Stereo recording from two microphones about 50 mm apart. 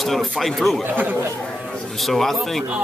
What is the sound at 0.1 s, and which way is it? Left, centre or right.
Speech, centre.